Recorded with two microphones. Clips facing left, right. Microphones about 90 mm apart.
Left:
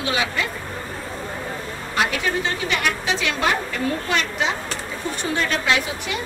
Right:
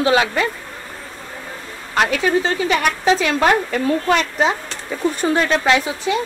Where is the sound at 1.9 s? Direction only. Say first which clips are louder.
Right 6 dB; 40° right (ahead or behind).